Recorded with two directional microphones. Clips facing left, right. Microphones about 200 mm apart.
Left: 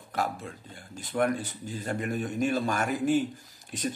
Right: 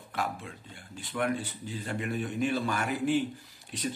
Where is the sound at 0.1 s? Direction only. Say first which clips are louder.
Left 3 dB; 40° left (ahead or behind).